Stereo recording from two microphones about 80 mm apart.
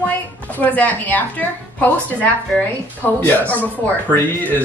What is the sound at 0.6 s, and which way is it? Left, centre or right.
Speech, centre.